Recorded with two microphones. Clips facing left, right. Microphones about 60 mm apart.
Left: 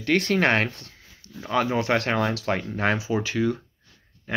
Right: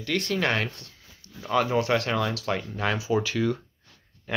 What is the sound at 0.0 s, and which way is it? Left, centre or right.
Speech, left.